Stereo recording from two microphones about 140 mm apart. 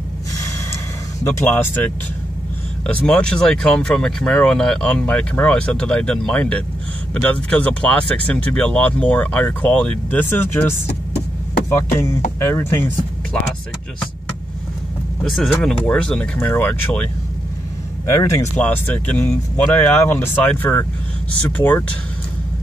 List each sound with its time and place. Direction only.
1.2 s speech: 15° left (ahead or behind)
2.9 s speech: 10° left (ahead or behind)
11.7 s speech: 20° left (ahead or behind)
15.2 s speech: centre (ahead or behind)
18.0 s speech: 20° left (ahead or behind)